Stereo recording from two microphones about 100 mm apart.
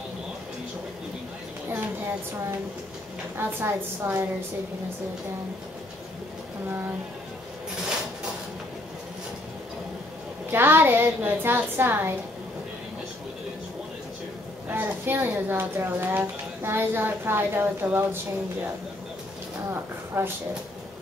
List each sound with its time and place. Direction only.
3.3 s speech: 25° right (ahead or behind)
10.5 s speech: 20° right (ahead or behind)
14.7 s speech: 20° right (ahead or behind)
20.2 s speech: 20° right (ahead or behind)